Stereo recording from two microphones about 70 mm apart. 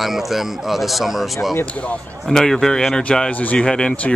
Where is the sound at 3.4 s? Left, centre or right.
Left.